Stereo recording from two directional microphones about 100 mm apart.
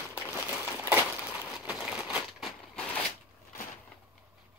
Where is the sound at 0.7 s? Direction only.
20° right (ahead or behind).